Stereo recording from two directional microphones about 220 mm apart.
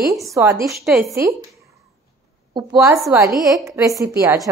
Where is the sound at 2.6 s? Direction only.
15° right (ahead or behind).